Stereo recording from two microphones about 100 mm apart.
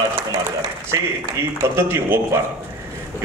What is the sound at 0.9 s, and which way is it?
A man's voice, 30° right (ahead or behind).